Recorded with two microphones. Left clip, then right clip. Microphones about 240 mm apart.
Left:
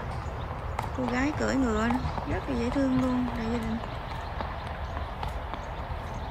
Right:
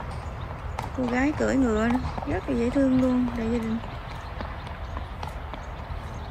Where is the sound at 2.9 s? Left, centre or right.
Left.